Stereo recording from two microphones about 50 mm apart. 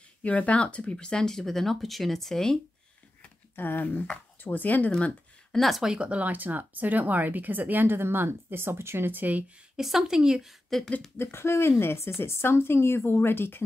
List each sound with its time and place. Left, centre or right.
0.2 s speech: left; by 2.6 s centre
3.5 s speech: left
5.5 s speech: centre
5.9 s speech: right
9.8 s a woman's voice: centre
10.7 s speech: centre
11.1 s speech: left